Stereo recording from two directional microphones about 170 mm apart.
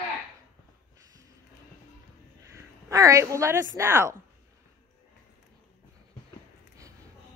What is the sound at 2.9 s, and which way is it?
A man's voice, 20° right (ahead or behind).